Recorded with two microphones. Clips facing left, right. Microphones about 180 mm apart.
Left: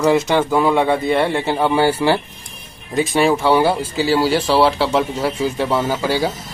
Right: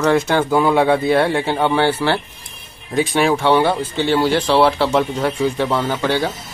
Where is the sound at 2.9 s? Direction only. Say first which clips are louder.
Left 1 dB; centre (ahead or behind).